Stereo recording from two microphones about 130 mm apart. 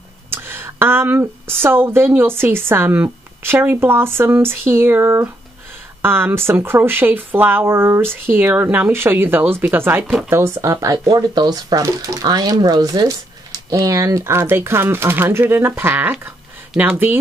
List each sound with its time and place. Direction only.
0.3 s speech: 20° right (ahead or behind)